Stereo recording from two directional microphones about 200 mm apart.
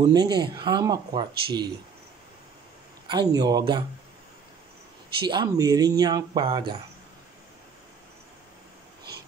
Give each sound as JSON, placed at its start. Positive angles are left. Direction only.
{"t": 0.0, "sound": "speech", "side_deg": -20}
{"t": 3.1, "sound": "speech", "side_deg": -20}
{"t": 5.3, "sound": "speech", "side_deg": -20}